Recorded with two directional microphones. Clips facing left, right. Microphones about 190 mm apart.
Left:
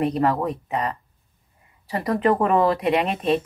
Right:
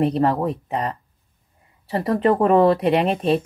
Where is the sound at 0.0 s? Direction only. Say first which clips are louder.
Right 2 dB; 30° right (ahead or behind).